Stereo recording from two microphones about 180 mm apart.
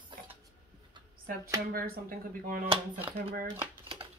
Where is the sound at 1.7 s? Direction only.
55° right (ahead or behind).